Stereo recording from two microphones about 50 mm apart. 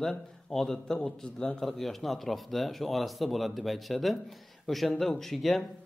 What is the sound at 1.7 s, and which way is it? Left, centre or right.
A man's voice, centre.